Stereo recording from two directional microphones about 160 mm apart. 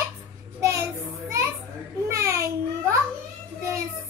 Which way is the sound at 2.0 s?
20° right (ahead or behind).